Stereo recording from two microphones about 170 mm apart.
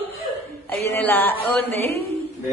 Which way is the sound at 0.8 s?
10° left (ahead or behind).